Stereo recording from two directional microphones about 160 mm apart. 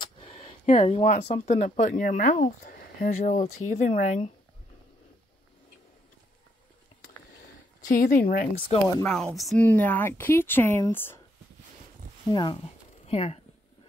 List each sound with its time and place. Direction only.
0.0 s speech: 40° left (ahead or behind)
7.9 s speech: 60° left (ahead or behind)
8.6 s speech: 20° left (ahead or behind)
9.0 s speech: 5° left (ahead or behind)
9.7 s speech: 10° left (ahead or behind)
12.3 s speech: 30° left (ahead or behind)